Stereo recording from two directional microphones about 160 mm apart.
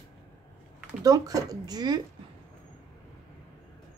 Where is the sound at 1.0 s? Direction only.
20° right (ahead or behind).